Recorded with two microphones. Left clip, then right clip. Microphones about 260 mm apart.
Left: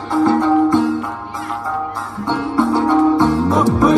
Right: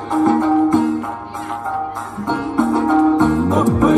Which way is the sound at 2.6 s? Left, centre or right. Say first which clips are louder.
Left 1 dB; left.